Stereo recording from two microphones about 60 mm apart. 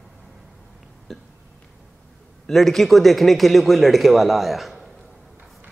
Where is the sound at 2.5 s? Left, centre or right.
Centre.